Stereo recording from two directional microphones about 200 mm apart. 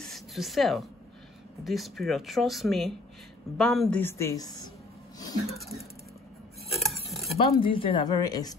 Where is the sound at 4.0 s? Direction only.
15° left (ahead or behind).